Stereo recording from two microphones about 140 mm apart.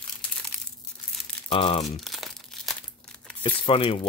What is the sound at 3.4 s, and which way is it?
Speech, 40° left (ahead or behind).